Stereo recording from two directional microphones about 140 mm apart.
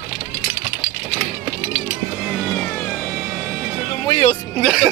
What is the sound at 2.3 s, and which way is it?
Music, 5° left (ahead or behind).